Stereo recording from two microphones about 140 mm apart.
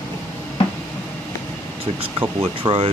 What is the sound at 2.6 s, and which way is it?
Speech, 40° right (ahead or behind).